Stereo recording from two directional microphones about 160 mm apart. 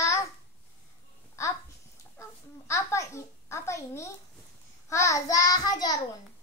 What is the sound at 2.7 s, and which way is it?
Babbling, 20° left (ahead or behind).